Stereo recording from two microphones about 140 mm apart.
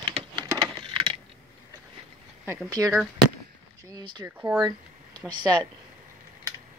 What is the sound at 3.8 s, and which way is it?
Speech, 25° right (ahead or behind).